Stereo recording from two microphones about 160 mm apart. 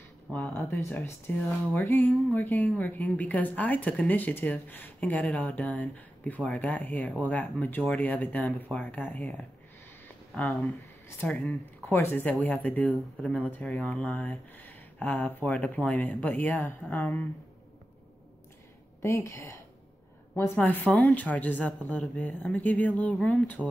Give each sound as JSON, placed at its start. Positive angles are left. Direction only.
{"t": 0.6, "sound": "speech", "side_deg": 15}
{"t": 10.3, "sound": "speech", "side_deg": 0}
{"t": 11.1, "sound": "speech", "side_deg": 15}
{"t": 18.9, "sound": "speech", "side_deg": 20}